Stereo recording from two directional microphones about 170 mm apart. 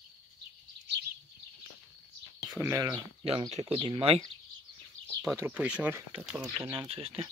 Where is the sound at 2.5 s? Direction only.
20° right (ahead or behind).